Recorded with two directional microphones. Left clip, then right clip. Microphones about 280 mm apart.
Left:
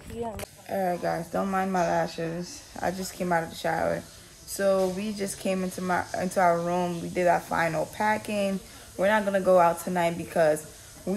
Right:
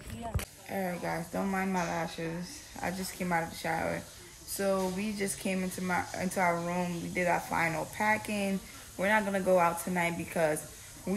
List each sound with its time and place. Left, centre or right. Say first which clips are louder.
0.7 s speech: left 8 dB; centre